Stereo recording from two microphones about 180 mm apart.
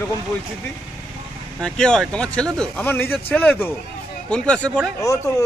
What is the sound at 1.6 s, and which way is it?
A man's voice, 5° left (ahead or behind).